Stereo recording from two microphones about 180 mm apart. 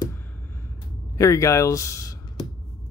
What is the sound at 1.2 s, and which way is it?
Speech, 15° left (ahead or behind).